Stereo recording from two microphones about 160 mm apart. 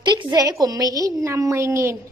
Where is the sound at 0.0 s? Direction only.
30° right (ahead or behind).